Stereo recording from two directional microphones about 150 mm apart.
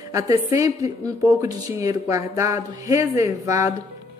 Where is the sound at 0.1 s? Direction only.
20° right (ahead or behind).